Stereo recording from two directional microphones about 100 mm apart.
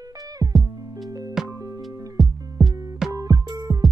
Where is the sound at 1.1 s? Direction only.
35° right (ahead or behind).